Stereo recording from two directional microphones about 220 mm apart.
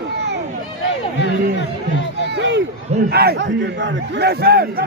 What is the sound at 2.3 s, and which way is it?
A man's voice, 55° right (ahead or behind).